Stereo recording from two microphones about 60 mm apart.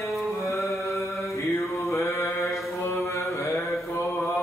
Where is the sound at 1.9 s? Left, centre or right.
Left.